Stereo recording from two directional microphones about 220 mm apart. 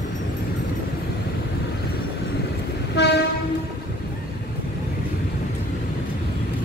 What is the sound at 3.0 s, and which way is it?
Train, 50° left (ahead or behind).